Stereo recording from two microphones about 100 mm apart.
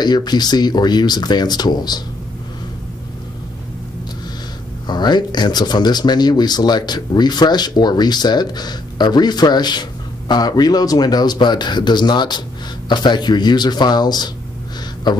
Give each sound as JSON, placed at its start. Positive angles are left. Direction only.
{"t": 0.0, "sound": "speech", "side_deg": 45}
{"t": 4.8, "sound": "speech", "side_deg": 45}